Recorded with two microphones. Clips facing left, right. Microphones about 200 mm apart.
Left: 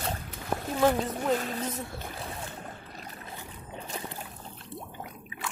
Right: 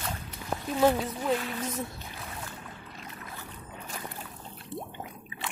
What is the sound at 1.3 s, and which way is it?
Speech, 40° left (ahead or behind).